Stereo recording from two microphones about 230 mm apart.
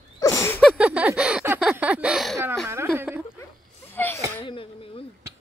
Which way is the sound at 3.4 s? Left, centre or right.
Centre.